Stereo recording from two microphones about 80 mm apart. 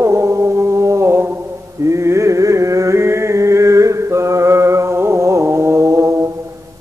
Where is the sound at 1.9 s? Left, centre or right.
Right.